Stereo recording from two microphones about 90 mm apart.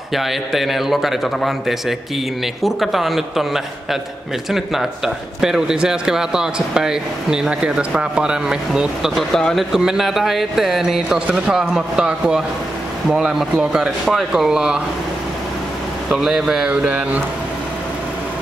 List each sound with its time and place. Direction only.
0.1 s a man's voice: centre (ahead or behind)
16.1 s speech: 5° right (ahead or behind)
16.7 s a man's voice: 15° right (ahead or behind)